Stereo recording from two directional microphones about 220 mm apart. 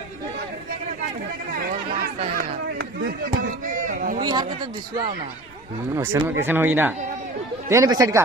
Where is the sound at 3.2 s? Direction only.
35° right (ahead or behind).